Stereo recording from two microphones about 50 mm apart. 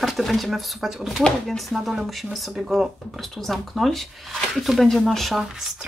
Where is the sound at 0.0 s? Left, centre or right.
Centre.